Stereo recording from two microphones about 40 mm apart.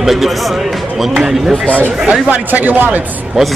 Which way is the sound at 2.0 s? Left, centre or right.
Right.